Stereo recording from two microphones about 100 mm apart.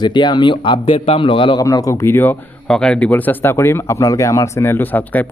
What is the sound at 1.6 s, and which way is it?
Speech, 35° left (ahead or behind).